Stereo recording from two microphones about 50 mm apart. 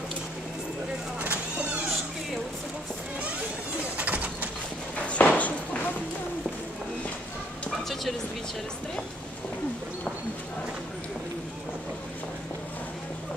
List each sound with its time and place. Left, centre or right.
1.2 s cat: right
3.9 s bird: right
4.9 s a sound: left